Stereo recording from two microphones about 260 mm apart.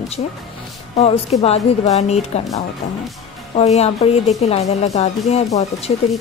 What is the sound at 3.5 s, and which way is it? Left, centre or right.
Speech, left.